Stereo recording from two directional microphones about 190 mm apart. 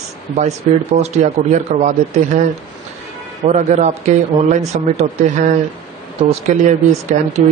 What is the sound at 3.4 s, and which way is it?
Speech, 40° right (ahead or behind).